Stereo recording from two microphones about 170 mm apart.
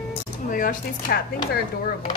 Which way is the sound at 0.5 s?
55° left (ahead or behind).